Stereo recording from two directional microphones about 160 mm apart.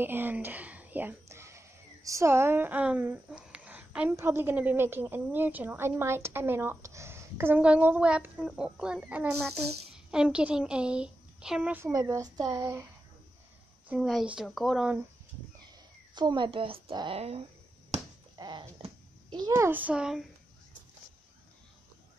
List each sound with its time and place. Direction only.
0.0 s speech: 10° right (ahead or behind)
11.9 s speech: 25° right (ahead or behind)
13.8 s speech: 5° right (ahead or behind)
16.2 s speech: 30° right (ahead or behind)
17.9 s a sound: 45° right (ahead or behind)
18.4 s speech: 30° right (ahead or behind); by 20.2 s 5° right (ahead or behind)